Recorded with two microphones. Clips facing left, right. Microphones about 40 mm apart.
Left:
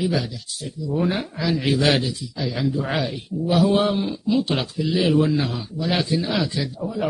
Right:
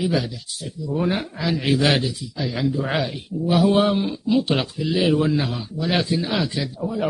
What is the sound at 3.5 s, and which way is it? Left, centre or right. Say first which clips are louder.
Speech: even; centre.